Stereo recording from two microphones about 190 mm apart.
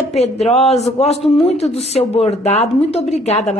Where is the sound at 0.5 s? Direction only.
35° left (ahead or behind).